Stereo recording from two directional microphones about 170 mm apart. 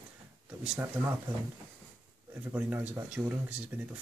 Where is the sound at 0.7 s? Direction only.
15° right (ahead or behind).